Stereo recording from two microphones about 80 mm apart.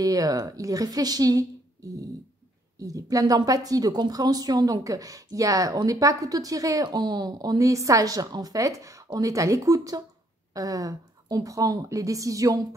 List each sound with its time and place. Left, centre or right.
0.0 s a woman's voice: right
2.8 s a woman's voice: right